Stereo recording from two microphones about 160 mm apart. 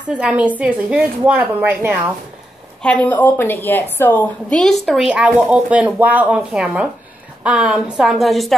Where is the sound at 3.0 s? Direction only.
10° left (ahead or behind).